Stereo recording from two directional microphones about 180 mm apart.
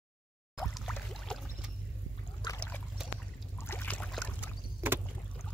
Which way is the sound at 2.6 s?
5° left (ahead or behind).